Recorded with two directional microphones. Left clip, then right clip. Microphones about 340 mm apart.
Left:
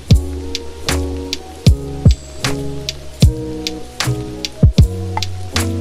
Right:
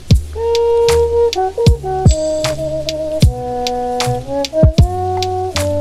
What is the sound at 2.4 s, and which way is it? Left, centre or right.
Music, centre.